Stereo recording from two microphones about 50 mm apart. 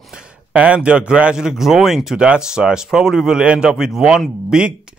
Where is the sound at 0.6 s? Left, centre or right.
Right; by 2.1 s centre.